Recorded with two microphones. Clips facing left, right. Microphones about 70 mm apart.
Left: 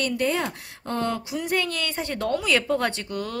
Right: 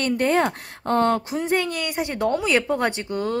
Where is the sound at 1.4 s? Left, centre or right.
Right.